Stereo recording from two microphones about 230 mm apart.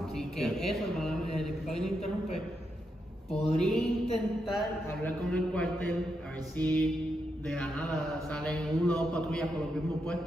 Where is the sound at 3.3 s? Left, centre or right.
Left.